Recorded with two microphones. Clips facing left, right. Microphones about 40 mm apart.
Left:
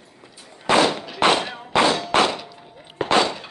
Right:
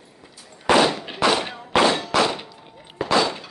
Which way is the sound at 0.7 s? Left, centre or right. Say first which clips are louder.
Right 1 dB; left.